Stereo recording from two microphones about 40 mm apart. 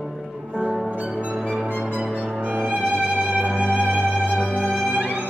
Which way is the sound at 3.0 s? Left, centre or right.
Right.